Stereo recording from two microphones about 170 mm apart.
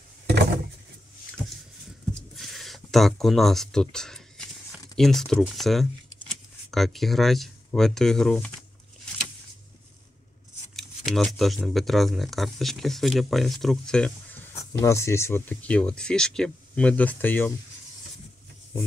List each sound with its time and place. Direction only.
2.3 s a sound: centre (ahead or behind)
5.4 s speech: centre (ahead or behind)
10.8 s speech: centre (ahead or behind)